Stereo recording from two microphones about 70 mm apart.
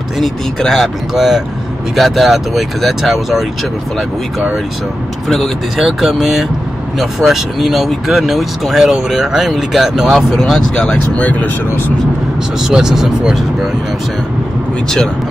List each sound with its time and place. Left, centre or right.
0.2 s speech: centre
5.3 s speech: centre
11.1 s speech: left
12.6 s speech: centre